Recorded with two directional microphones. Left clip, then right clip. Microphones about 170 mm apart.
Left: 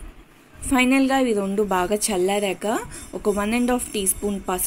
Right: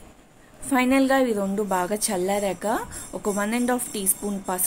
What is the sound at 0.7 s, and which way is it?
A woman's voice, 15° left (ahead or behind).